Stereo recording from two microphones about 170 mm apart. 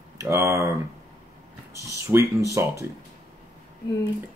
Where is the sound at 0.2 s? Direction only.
15° right (ahead or behind).